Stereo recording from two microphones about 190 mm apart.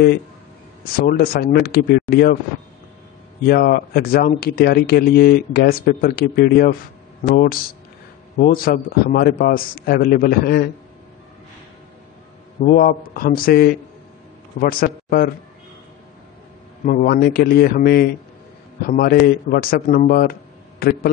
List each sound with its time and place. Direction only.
0.9 s speech: 50° left (ahead or behind)
3.4 s speech: 50° left (ahead or behind)
12.6 s speech: 50° left (ahead or behind)
16.8 s speech: 50° left (ahead or behind)